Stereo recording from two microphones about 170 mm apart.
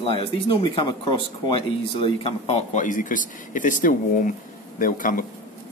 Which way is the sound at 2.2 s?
40° left (ahead or behind).